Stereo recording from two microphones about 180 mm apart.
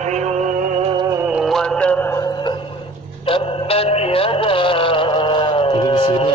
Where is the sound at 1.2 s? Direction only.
5° right (ahead or behind); by 2.5 s 15° left (ahead or behind).